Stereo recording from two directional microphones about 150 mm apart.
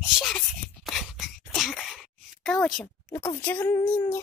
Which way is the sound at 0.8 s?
Centre (ahead or behind).